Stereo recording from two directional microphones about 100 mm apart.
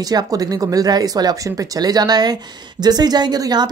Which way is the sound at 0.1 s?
40° right (ahead or behind).